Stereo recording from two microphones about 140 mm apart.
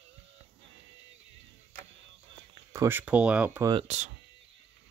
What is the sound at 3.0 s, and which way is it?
Speech, 10° right (ahead or behind).